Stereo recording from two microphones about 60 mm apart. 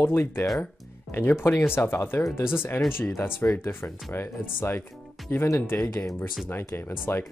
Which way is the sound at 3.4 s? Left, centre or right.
Left.